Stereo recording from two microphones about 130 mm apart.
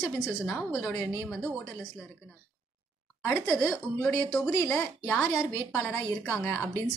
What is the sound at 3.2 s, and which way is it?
A woman's voice, 15° left (ahead or behind).